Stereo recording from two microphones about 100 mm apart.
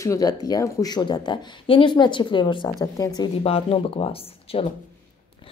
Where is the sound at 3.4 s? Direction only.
75° left (ahead or behind).